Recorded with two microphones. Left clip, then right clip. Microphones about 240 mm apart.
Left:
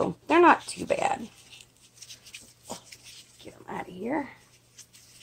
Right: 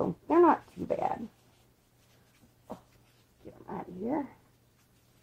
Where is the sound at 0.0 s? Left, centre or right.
Centre.